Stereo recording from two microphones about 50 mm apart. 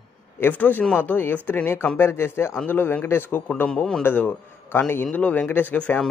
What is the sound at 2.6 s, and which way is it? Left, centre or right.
A man's voice, left.